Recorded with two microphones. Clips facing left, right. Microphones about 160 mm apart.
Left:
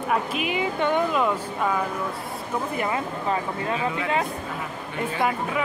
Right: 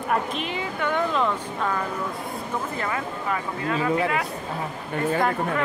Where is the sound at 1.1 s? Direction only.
10° left (ahead or behind).